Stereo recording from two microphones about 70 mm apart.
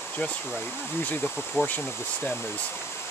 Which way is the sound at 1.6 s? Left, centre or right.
Left.